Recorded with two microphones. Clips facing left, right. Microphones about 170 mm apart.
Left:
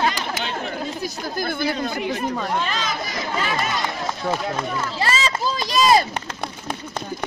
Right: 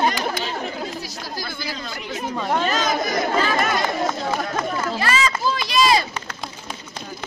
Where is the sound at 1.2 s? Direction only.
55° left (ahead or behind).